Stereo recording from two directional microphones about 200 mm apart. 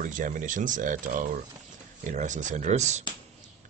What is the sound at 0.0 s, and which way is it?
Speech, 40° right (ahead or behind).